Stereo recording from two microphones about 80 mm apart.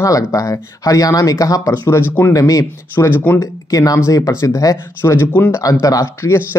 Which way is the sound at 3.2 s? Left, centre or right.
Left.